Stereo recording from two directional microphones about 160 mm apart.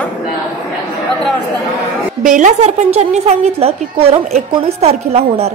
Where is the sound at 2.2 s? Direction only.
50° right (ahead or behind).